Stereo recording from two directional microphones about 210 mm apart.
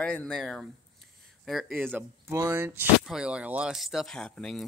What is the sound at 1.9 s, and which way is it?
Speech, 10° right (ahead or behind).